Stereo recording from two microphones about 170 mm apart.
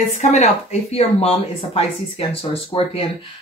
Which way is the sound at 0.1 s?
40° left (ahead or behind).